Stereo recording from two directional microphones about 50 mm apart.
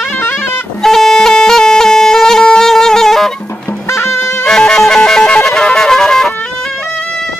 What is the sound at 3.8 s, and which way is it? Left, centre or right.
Music, left.